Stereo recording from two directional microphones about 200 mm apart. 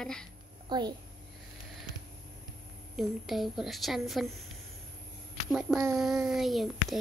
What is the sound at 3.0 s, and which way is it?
A woman's voice, centre (ahead or behind).